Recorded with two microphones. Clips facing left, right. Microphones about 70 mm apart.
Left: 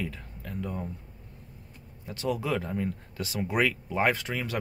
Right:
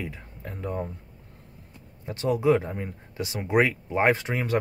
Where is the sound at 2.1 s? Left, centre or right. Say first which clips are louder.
Right 7 dB; right.